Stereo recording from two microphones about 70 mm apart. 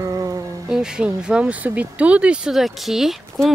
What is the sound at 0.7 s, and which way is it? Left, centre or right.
Speech, centre.